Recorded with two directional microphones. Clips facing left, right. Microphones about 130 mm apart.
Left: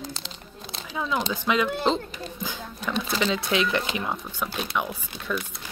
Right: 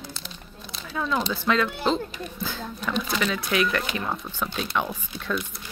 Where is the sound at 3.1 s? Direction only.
25° left (ahead or behind).